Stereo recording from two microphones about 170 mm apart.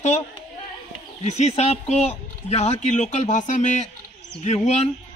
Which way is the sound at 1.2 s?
40° left (ahead or behind).